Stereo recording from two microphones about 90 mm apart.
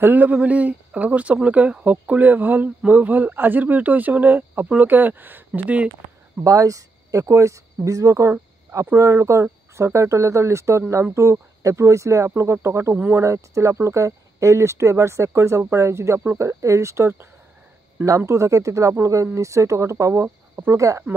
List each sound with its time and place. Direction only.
0.0 s speech: 20° right (ahead or behind)
6.4 s speech: 40° right (ahead or behind)